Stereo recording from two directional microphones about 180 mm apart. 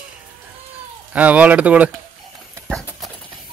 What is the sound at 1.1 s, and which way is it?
Speech, 10° right (ahead or behind).